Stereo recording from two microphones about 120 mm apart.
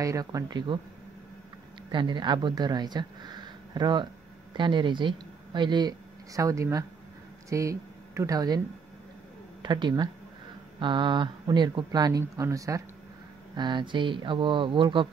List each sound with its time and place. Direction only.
0.0 s speech: 30° right (ahead or behind)
1.9 s a woman's voice: 40° right (ahead or behind)
9.6 s speech: 35° right (ahead or behind)
13.6 s speech: 40° right (ahead or behind)